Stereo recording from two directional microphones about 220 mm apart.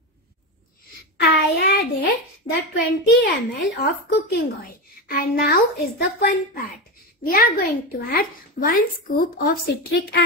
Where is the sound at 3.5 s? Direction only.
45° left (ahead or behind).